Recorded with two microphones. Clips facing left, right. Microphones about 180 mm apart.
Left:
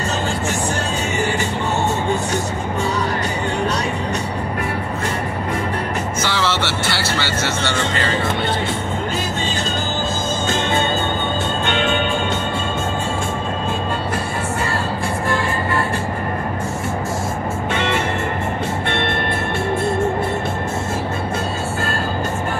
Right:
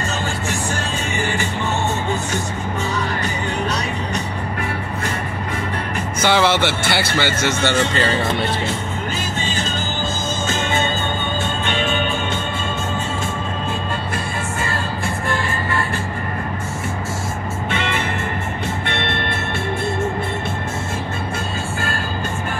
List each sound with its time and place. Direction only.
6.2 s music: 15° right (ahead or behind)